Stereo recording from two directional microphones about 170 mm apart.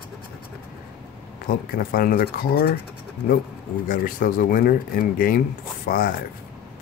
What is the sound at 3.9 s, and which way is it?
Speech, 55° left (ahead or behind).